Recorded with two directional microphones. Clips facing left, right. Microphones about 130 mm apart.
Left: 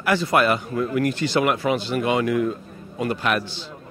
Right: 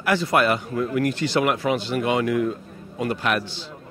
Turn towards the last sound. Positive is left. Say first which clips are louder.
# left 1 dB
turn(degrees=20)  # may be behind; listen again after turning